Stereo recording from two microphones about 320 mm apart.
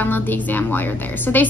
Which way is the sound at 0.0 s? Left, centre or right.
Centre.